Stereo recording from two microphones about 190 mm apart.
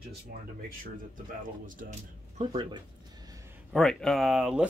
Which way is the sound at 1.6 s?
45° right (ahead or behind).